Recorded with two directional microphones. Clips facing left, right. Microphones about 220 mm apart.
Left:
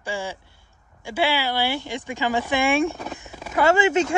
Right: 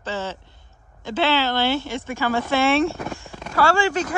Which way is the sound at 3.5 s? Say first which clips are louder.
Left 2 dB; 20° left (ahead or behind).